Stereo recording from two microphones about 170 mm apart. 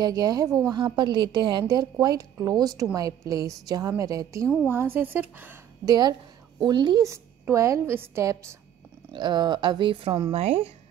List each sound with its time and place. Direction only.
0.0 s a woman's voice: 20° right (ahead or behind)
5.9 s a woman's voice: 25° right (ahead or behind)